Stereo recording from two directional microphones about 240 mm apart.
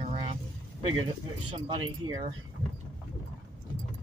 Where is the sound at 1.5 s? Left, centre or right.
Right.